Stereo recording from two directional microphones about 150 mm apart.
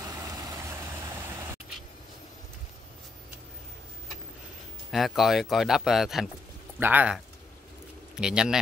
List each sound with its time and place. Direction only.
0.0 s vehicle: 25° right (ahead or behind)
4.9 s speech: centre (ahead or behind)
8.2 s speech: 5° right (ahead or behind)